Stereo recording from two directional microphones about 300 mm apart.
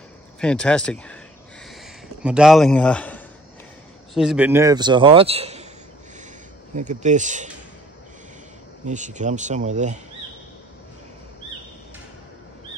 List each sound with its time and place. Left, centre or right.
0.4 s a man's voice: centre
2.2 s a man's voice: centre; by 5.7 s right
6.7 s speech: right
8.8 s speech: right